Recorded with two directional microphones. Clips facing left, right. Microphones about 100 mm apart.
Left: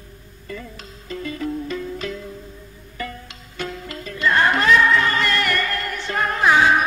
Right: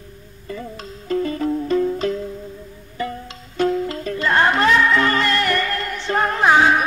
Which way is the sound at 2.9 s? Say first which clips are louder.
Right 5 dB; 25° right (ahead or behind).